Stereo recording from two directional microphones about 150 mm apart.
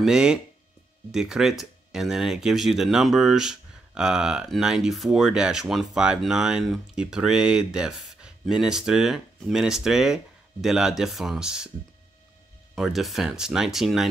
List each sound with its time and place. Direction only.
0.0 s speech: 5° right (ahead or behind)
12.7 s speech: centre (ahead or behind)